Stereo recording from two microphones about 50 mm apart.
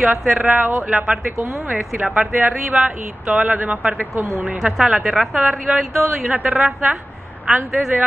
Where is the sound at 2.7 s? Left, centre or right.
Centre.